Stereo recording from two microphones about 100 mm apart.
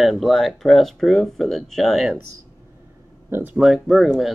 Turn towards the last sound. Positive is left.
turn(degrees=0)  # may be behind; listen again after turning